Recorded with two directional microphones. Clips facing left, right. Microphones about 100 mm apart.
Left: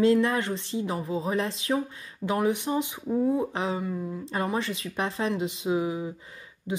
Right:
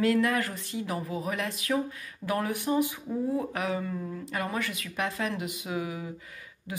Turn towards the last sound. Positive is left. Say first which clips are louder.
# left 6 dB
turn(degrees=25)  # may be behind; listen again after turning